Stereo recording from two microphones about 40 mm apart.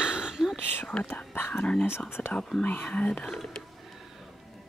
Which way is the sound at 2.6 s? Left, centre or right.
Left.